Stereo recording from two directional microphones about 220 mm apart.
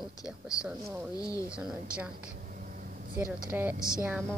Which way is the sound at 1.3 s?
15° left (ahead or behind).